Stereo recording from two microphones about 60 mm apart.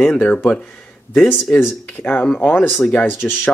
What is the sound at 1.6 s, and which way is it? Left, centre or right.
Speech, left.